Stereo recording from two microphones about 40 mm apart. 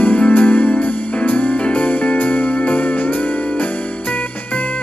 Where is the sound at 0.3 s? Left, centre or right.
Left.